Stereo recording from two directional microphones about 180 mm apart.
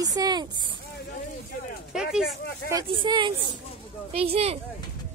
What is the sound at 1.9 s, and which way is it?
Speech, 5° right (ahead or behind).